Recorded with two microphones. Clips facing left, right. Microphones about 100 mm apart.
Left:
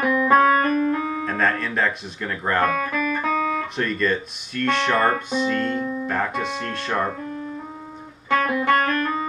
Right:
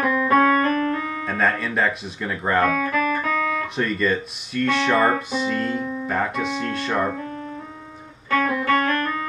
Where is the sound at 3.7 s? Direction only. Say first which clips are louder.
Right 1 dB; centre (ahead or behind).